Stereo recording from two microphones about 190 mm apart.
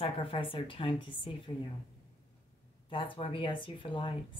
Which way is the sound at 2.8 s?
25° left (ahead or behind).